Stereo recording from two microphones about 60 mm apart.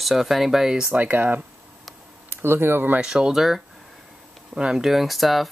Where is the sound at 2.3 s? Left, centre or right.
Right.